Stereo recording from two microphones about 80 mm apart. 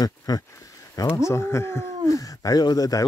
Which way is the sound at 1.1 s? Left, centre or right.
Left.